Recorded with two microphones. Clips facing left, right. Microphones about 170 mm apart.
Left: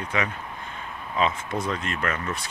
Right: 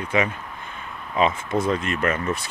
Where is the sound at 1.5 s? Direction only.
25° right (ahead or behind).